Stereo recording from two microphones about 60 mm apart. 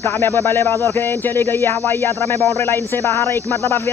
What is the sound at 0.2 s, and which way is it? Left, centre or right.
Speech, left.